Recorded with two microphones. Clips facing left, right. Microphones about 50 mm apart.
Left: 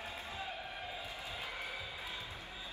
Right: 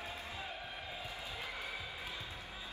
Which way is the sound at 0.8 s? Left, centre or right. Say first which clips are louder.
Left 1 dB; left.